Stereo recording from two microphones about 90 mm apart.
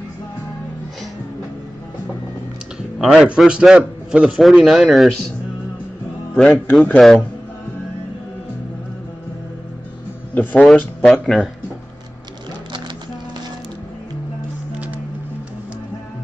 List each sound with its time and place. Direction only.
3.0 s a man's voice: 5° right (ahead or behind)
6.3 s speech: 5° left (ahead or behind)
10.3 s speech: 15° left (ahead or behind)
11.0 s speech: centre (ahead or behind)